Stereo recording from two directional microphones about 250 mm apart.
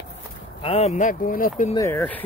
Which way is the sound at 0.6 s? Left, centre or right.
Left.